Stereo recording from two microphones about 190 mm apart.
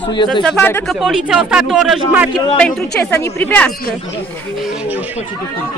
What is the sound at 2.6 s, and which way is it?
Speech, 5° left (ahead or behind).